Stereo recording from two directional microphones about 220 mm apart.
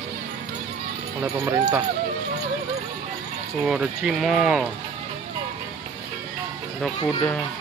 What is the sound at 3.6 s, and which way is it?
Speech, 5° right (ahead or behind).